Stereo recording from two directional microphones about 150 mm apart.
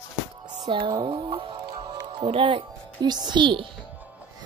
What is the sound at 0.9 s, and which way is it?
A woman's voice, 30° right (ahead or behind).